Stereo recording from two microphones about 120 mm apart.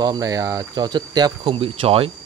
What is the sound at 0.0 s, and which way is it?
Speech, 30° right (ahead or behind).